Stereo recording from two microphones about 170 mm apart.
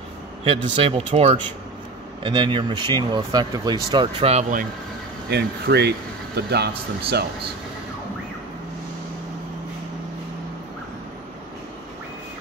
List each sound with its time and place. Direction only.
0.4 s speech: 35° right (ahead or behind)
5.3 s speech: 75° right (ahead or behind)